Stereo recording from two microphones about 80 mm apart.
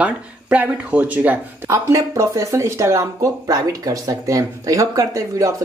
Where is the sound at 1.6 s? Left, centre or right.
Right.